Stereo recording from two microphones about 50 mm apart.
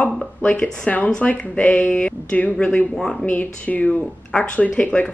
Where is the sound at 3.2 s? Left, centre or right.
Left.